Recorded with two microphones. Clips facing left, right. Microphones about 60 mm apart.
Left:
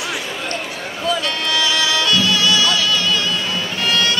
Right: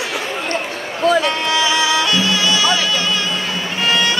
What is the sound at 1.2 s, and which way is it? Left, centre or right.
Music, right.